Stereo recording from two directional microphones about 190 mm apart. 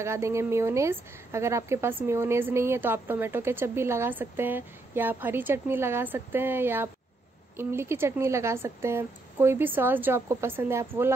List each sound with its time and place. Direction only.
0.0 s a woman's voice: 15° right (ahead or behind)